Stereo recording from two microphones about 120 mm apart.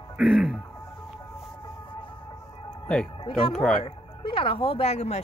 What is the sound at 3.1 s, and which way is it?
Speech, 45° left (ahead or behind).